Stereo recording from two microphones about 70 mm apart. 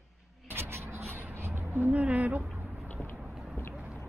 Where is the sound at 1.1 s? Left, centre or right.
Right.